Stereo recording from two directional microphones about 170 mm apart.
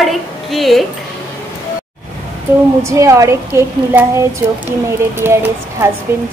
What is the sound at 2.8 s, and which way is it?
A woman's voice, 15° right (ahead or behind).